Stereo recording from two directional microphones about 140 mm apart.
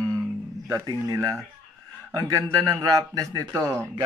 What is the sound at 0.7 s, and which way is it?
A man's voice, 25° right (ahead or behind).